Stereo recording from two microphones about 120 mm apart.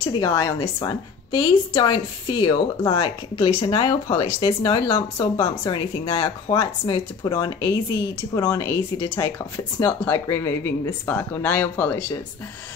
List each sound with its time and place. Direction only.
0.0 s a woman's voice: 45° left (ahead or behind)
0.3 s a woman's voice: 35° left (ahead or behind)
9.8 s speech: 20° left (ahead or behind)